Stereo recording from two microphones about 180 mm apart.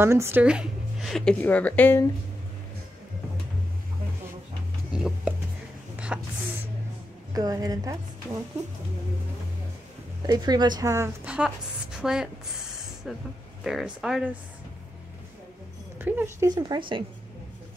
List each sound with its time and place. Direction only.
0.0 s speech: 15° right (ahead or behind); by 2.0 s 10° left (ahead or behind)
4.9 s speech: 5° right (ahead or behind)
7.3 s speech: 20° right (ahead or behind)
10.2 s speech: 20° right (ahead or behind)
11.2 s a woman's voice: 5° right (ahead or behind)
13.7 s speech: centre (ahead or behind)
16.0 s speech: 10° right (ahead or behind)
16.4 s speech: 25° right (ahead or behind)